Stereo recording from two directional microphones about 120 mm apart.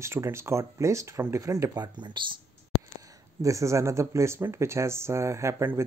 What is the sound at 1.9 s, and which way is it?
Speech, 40° right (ahead or behind).